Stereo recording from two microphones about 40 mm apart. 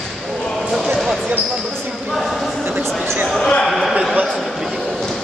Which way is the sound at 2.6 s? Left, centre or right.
Right.